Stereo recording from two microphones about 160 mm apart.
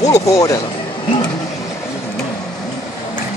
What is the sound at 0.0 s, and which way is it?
Speech, 20° left (ahead or behind).